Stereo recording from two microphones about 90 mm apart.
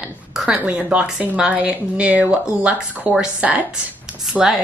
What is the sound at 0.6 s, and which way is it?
Speech, 15° right (ahead or behind).